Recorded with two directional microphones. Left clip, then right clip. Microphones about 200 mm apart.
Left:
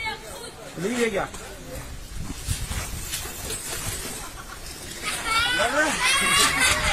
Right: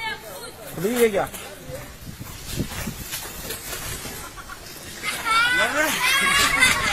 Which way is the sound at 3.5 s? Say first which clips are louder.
Even; 60° left (ahead or behind).